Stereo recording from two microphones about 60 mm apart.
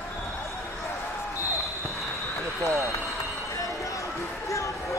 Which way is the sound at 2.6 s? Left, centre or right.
Right.